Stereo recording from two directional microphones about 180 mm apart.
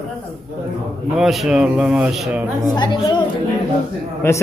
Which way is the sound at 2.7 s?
25° left (ahead or behind).